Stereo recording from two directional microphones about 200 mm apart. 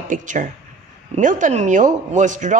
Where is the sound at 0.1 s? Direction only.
40° right (ahead or behind).